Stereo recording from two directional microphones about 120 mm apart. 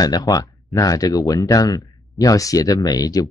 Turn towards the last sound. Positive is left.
turn(degrees=30)  # may be behind; listen again after turning